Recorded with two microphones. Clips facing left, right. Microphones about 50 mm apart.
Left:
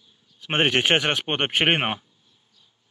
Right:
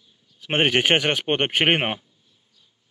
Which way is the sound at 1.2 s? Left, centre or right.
Right.